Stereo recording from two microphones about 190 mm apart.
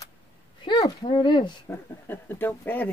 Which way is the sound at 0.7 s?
25° left (ahead or behind).